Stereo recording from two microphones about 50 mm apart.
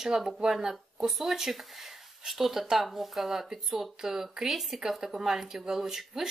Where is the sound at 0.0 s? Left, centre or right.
Centre.